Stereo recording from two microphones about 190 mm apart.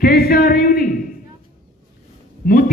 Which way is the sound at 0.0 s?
50° left (ahead or behind).